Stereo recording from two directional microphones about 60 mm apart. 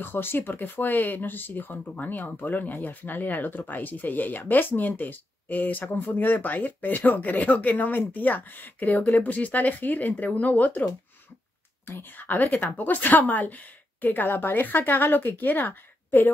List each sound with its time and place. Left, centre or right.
0.0 s a woman's voice: left